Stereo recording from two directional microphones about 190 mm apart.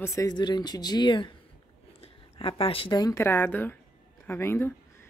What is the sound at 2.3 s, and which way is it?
A woman's voice, 30° left (ahead or behind).